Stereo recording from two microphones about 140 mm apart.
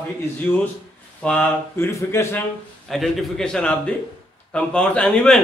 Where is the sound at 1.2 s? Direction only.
10° left (ahead or behind).